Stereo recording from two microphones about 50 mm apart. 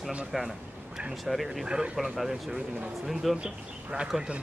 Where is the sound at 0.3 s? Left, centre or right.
Centre.